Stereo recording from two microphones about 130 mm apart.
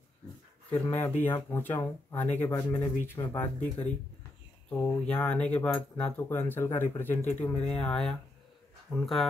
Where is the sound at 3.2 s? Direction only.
35° left (ahead or behind).